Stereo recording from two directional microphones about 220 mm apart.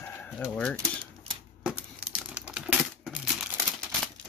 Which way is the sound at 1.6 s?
5° right (ahead or behind).